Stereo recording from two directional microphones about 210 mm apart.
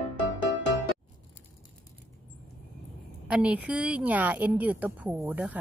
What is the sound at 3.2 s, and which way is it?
Speech, 5° right (ahead or behind).